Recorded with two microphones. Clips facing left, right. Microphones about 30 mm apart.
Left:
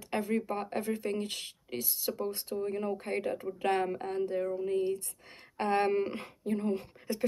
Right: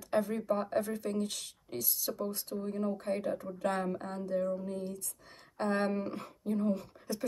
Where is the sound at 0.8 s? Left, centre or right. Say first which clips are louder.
Left 2 dB; left.